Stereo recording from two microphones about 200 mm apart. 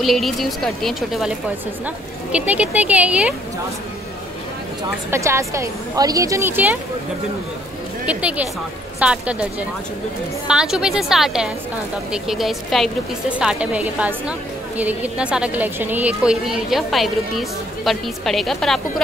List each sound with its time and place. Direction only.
0.0 s a woman's voice: centre (ahead or behind)
2.3 s a woman's voice: 5° right (ahead or behind)
5.1 s a woman's voice: 15° right (ahead or behind)
8.0 s a woman's voice: 5° right (ahead or behind)